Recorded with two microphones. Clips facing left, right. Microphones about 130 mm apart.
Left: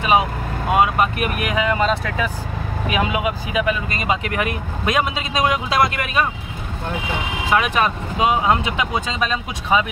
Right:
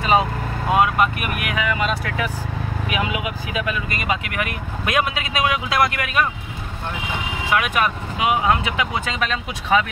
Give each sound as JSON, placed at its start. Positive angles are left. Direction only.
{"t": 0.0, "sound": "speech", "side_deg": 15}
{"t": 7.5, "sound": "speech", "side_deg": 30}